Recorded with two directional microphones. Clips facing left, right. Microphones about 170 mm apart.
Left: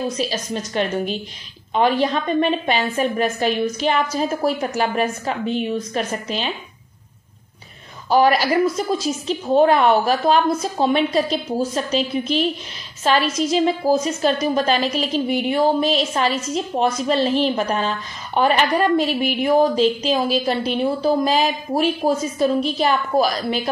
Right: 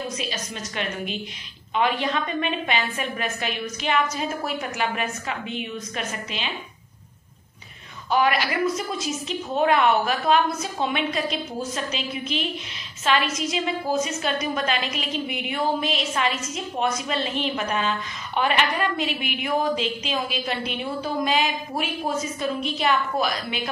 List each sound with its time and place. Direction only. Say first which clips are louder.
0.2 s a woman's voice: left 8 dB; 35° left (ahead or behind)
8.1 s a woman's voice: left 6 dB; 35° left (ahead or behind)